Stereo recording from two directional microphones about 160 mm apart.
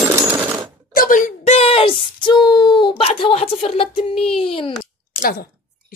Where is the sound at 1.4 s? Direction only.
40° left (ahead or behind).